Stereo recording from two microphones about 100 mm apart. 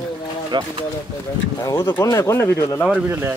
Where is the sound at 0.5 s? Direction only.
50° right (ahead or behind).